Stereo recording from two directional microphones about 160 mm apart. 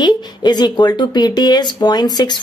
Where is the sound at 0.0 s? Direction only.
25° left (ahead or behind).